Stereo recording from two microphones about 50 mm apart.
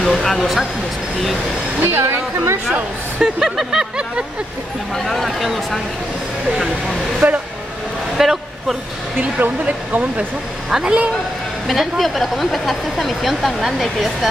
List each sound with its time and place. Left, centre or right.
0.0 s speech: centre
1.8 s a woman's voice: right
3.2 s a woman's voice: centre
4.9 s speech: centre
7.2 s speech: right
8.2 s speech: centre
9.4 s speech: right
10.7 s a woman's voice: centre
11.6 s speech: centre